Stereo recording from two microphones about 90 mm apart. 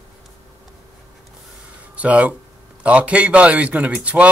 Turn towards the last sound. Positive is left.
turn(degrees=-15)  # may be behind; listen again after turning